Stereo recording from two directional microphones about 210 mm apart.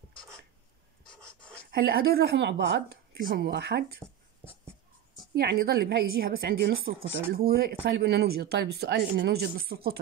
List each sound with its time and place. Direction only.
1.2 s speech: 5° left (ahead or behind)
1.7 s speech: 50° right (ahead or behind)
4.5 s writing: 10° right (ahead or behind)
5.3 s speech: 50° right (ahead or behind)